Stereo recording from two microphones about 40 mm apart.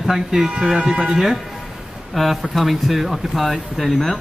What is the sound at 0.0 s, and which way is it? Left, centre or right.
Speech, centre.